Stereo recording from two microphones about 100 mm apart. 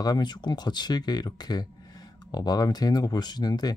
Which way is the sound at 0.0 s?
45° left (ahead or behind).